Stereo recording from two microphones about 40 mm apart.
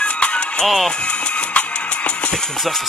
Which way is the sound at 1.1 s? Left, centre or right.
Left.